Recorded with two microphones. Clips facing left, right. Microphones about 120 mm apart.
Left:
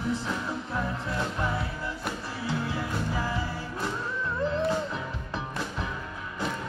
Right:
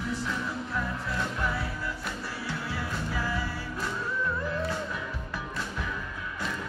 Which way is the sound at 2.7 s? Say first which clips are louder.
Left 2 dB; 20° left (ahead or behind).